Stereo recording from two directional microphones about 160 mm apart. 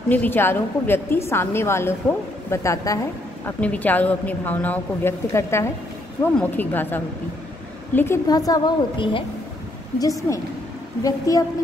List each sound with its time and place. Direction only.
0.1 s a woman's voice: 10° left (ahead or behind)
3.4 s a woman's voice: 10° left (ahead or behind); by 9.2 s 30° left (ahead or behind)
9.9 s a woman's voice: 20° left (ahead or behind)